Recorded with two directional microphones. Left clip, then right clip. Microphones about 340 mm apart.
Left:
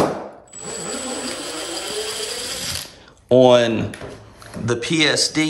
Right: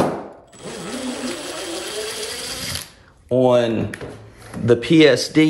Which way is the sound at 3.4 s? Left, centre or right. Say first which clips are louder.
Left 2 dB; centre.